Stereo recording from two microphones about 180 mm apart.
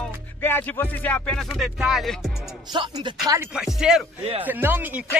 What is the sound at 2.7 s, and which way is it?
Speech, 25° right (ahead or behind).